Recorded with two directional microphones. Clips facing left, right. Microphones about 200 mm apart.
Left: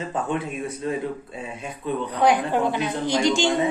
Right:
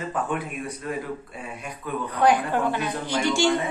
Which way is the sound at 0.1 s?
25° left (ahead or behind).